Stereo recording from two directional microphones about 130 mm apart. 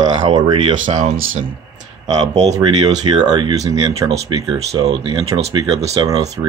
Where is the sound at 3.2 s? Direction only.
35° right (ahead or behind).